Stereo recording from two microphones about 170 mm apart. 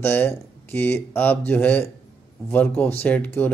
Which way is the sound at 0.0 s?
10° left (ahead or behind).